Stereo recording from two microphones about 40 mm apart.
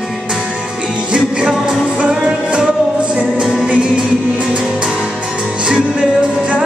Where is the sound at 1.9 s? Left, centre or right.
Right.